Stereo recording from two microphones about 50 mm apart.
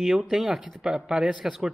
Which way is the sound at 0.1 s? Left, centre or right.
Centre.